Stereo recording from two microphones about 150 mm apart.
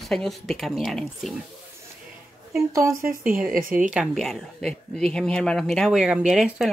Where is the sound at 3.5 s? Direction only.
65° right (ahead or behind).